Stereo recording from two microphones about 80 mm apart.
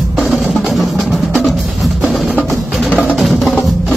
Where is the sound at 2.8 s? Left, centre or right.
Centre.